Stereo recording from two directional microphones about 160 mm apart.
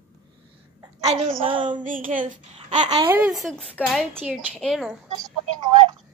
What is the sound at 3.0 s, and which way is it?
Speech, 15° right (ahead or behind).